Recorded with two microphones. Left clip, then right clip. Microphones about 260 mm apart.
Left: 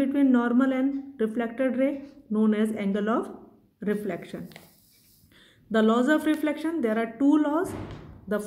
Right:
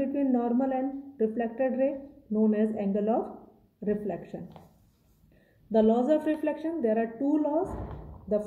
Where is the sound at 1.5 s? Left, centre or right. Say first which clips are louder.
Left 1 dB; left.